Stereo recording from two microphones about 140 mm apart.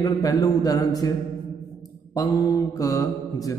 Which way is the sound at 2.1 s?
25° left (ahead or behind).